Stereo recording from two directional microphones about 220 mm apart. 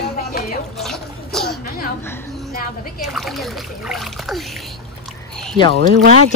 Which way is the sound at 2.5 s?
40° left (ahead or behind).